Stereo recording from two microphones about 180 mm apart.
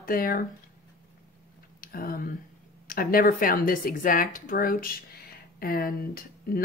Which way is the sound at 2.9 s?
55° left (ahead or behind).